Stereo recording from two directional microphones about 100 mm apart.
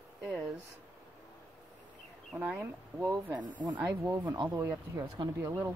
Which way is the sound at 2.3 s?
15° right (ahead or behind).